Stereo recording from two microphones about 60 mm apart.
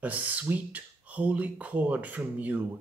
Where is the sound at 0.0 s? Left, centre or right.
Right.